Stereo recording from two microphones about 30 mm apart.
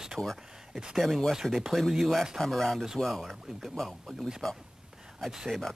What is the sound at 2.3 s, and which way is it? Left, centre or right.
Speech, centre.